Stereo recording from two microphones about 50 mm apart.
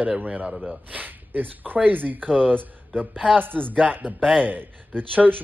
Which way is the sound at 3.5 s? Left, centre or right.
Centre.